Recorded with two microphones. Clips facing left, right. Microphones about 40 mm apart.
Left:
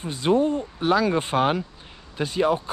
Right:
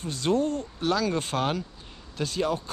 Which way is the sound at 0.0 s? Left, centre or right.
Centre.